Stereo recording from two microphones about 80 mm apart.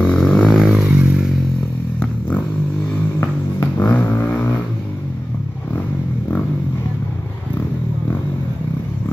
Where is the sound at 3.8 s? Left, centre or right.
Left.